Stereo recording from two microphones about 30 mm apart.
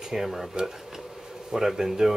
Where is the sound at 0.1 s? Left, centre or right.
Centre.